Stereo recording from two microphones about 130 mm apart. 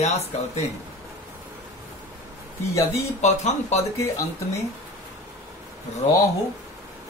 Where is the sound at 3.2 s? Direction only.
60° left (ahead or behind).